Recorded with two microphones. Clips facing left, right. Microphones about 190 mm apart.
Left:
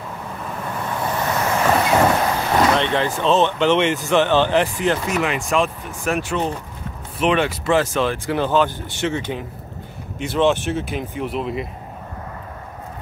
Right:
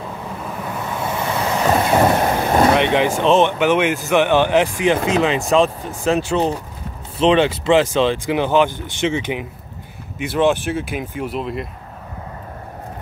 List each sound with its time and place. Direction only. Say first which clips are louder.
0.7 s vehicle: left 1 dB; 10° right (ahead or behind)
2.7 s speech: right 4 dB; 15° right (ahead or behind)
5.0 s speech: right 4 dB; 25° right (ahead or behind); by 11.7 s centre (ahead or behind)